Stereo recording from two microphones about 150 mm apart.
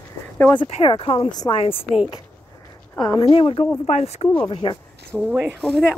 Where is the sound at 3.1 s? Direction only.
35° left (ahead or behind).